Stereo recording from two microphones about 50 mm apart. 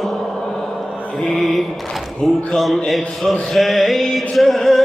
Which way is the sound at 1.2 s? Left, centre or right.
Centre.